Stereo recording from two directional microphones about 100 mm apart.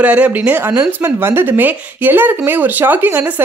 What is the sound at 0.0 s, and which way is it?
Speech, 15° right (ahead or behind).